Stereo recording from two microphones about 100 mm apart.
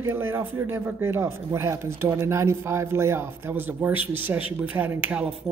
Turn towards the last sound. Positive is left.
turn(degrees=-15)  # may be behind; listen again after turning